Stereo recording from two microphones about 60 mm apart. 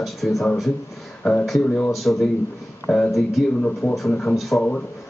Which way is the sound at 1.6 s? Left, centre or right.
Centre.